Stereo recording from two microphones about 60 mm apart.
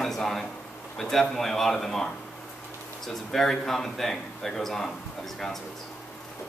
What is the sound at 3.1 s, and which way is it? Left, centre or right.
Speech, centre.